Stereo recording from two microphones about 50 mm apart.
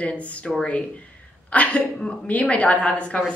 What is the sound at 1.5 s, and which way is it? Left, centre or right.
A woman's voice, left.